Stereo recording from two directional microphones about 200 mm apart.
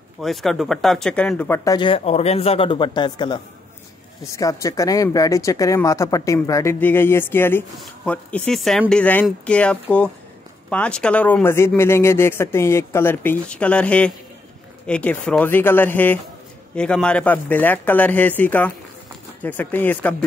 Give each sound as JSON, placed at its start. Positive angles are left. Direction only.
{"t": 0.2, "sound": "speech", "side_deg": 0}